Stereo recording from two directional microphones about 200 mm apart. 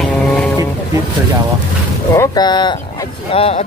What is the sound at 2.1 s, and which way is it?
Speech, 15° left (ahead or behind).